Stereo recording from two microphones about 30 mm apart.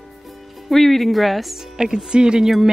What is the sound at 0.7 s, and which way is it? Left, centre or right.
Speech, centre.